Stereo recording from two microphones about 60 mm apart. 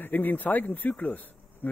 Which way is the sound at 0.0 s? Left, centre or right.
Left.